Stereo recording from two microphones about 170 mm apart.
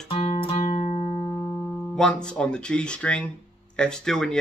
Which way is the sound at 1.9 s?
5° left (ahead or behind).